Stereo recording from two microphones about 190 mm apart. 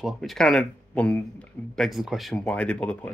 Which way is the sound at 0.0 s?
Centre (ahead or behind).